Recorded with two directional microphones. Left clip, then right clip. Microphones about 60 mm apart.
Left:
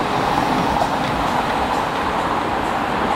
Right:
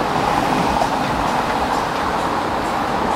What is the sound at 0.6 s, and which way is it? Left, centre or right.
Vehicle, centre.